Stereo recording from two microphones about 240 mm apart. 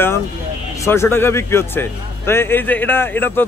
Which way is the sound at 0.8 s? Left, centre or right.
Centre.